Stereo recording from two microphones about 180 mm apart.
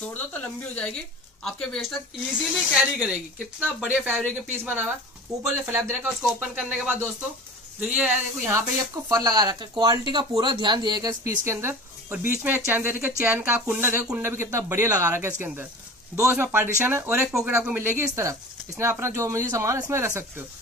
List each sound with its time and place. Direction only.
0.0 s speech: 10° left (ahead or behind); by 17.3 s 10° right (ahead or behind)
17.3 s speech: centre (ahead or behind)